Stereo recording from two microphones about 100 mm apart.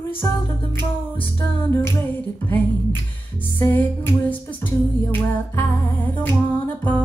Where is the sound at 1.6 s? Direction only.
20° left (ahead or behind).